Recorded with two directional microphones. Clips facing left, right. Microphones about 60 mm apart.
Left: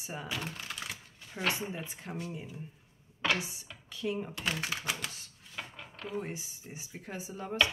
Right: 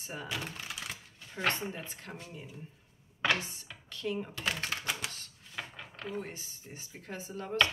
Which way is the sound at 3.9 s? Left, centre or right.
Centre.